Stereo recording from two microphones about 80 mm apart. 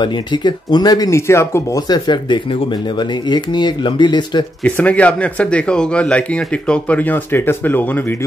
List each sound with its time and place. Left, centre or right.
0.0 s speech: left
1.1 s speech: left
1.9 s speech: left
4.6 s speech: centre